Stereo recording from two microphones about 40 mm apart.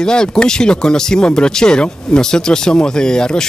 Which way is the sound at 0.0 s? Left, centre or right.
Centre.